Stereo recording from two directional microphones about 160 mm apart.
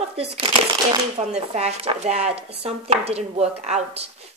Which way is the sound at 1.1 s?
45° right (ahead or behind).